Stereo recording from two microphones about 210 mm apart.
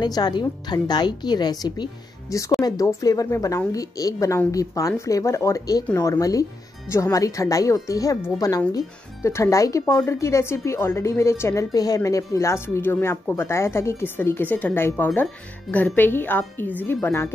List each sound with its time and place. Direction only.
0.0 s a woman's voice: 20° left (ahead or behind)